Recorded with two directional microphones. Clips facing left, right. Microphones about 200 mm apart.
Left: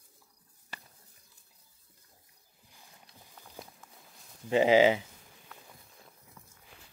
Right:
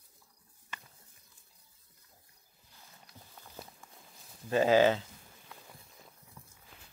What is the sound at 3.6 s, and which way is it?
Walk, centre (ahead or behind).